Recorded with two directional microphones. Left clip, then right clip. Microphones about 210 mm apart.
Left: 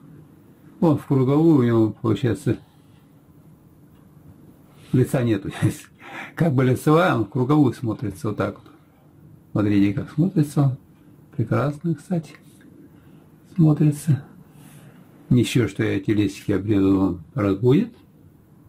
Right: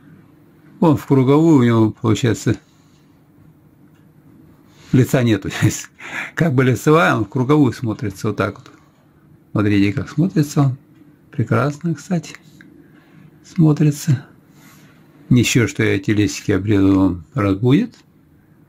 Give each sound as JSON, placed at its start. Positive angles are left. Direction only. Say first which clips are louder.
{"t": 0.7, "sound": "speech", "louder": "right 5 dB", "side_deg": -55}
{"t": 4.9, "sound": "speech", "louder": "right 5 dB", "side_deg": -50}
{"t": 9.5, "sound": "speech", "louder": "right 3 dB", "side_deg": -35}
{"t": 13.5, "sound": "speech", "louder": "right 4 dB", "side_deg": -45}
{"t": 15.3, "sound": "speech", "louder": "right 5 dB", "side_deg": -40}